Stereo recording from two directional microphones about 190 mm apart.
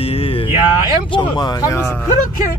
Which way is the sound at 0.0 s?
30° left (ahead or behind).